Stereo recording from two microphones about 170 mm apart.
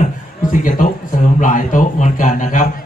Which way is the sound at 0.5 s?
50° left (ahead or behind).